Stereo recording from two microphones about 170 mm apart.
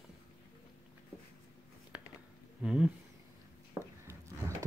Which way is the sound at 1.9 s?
5° right (ahead or behind).